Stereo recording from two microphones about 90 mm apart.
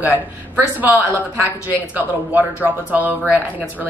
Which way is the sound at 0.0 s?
20° right (ahead or behind).